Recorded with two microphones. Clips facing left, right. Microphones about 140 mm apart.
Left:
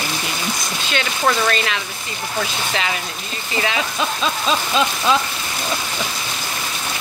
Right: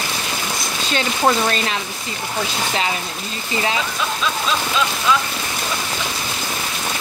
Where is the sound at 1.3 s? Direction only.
25° right (ahead or behind).